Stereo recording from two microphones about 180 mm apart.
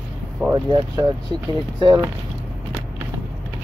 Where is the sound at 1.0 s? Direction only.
25° right (ahead or behind).